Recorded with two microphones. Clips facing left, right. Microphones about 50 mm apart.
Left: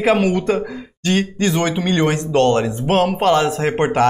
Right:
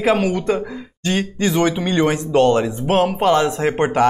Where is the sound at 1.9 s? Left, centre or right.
Centre.